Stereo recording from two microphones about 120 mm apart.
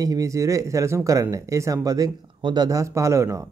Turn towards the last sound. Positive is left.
turn(degrees=-25)  # may be behind; listen again after turning